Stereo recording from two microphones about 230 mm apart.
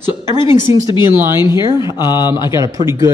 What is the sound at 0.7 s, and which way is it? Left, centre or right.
Speech, centre.